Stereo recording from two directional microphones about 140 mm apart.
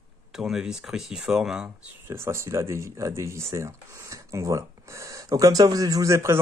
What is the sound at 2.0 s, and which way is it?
Speech, 20° right (ahead or behind).